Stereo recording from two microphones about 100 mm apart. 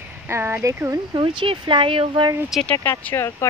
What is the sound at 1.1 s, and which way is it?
Speech, 50° right (ahead or behind).